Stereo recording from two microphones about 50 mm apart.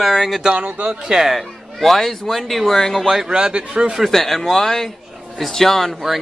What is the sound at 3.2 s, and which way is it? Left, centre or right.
Speech, centre.